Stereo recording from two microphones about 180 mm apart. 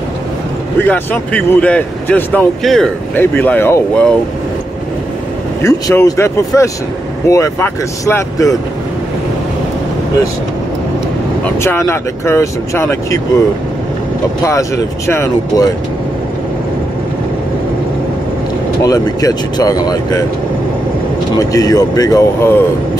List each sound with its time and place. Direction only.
0.8 s speech: 10° left (ahead or behind)
5.6 s speech: 15° left (ahead or behind)
11.4 s speech: 15° left (ahead or behind)
14.4 s speech: 15° left (ahead or behind)
18.8 s speech: 20° left (ahead or behind)
21.4 s speech: 20° left (ahead or behind)